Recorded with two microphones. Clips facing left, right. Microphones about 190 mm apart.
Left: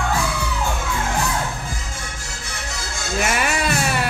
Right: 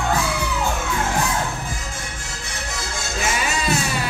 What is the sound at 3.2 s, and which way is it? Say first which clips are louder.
Music: left 2 dB; 60° left (ahead or behind).